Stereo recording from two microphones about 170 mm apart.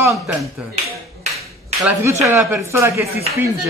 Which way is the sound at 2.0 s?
15° right (ahead or behind).